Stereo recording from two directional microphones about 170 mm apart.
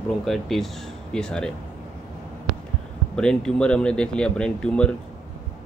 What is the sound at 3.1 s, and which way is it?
Speech, 5° left (ahead or behind).